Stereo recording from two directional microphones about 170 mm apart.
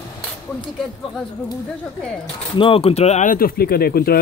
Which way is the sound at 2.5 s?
30° left (ahead or behind).